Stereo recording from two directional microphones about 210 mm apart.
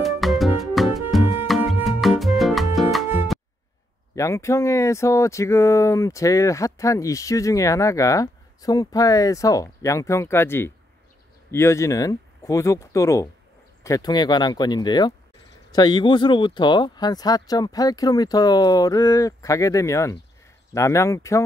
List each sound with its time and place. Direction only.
0.0 s music: centre (ahead or behind)
4.1 s speech: 15° left (ahead or behind)